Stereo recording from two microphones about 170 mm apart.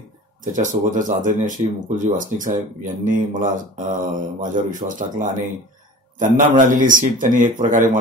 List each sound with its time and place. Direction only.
0.5 s speech: 50° right (ahead or behind)